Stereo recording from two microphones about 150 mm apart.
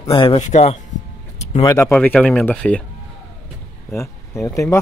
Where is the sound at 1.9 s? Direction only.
10° left (ahead or behind).